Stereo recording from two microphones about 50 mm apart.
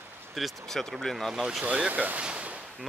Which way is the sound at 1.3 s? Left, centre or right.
Centre.